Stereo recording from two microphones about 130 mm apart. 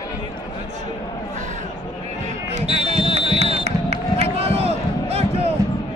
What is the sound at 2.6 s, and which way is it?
Fire alarm, 50° right (ahead or behind).